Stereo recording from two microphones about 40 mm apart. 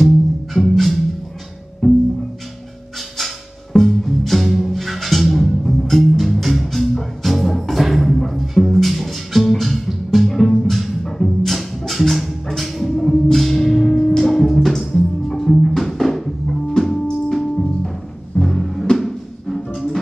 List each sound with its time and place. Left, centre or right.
0.6 s music: centre
1.8 s music: centre
3.7 s music: centre